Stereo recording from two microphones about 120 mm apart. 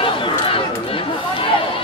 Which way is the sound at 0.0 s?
45° left (ahead or behind).